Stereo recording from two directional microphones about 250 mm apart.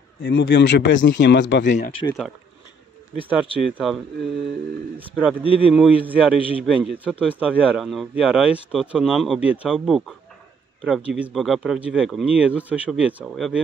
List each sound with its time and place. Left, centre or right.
0.2 s speech: left
1.8 s speech: left
3.2 s speech: centre
5.4 s speech: left
5.7 s speech: centre